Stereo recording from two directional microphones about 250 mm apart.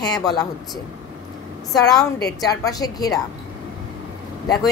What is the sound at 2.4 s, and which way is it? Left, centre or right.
Speech, centre.